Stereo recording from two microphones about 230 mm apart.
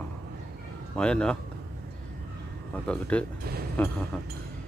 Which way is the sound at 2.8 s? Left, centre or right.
Centre.